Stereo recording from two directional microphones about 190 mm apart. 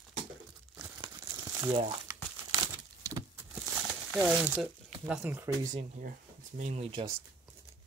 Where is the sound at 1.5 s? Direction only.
15° right (ahead or behind).